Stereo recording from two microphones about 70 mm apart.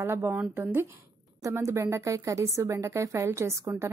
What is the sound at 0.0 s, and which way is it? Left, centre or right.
Speech, right.